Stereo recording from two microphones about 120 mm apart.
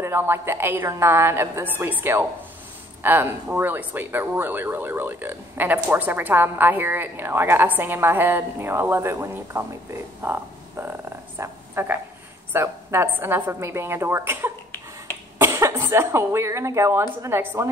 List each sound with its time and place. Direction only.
0.0 s a woman's voice: 20° right (ahead or behind)
10.2 s a sound: 15° right (ahead or behind)
12.5 s a woman's voice: 20° right (ahead or behind)